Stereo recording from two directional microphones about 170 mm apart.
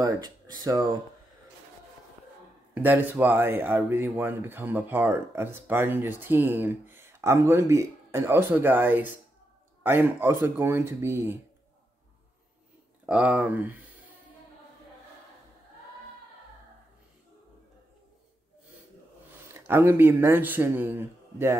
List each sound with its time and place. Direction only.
0.0 s speech: 25° right (ahead or behind)
2.7 s speech: 10° right (ahead or behind)
13.0 s speech: 5° right (ahead or behind)
19.7 s speech: 15° right (ahead or behind)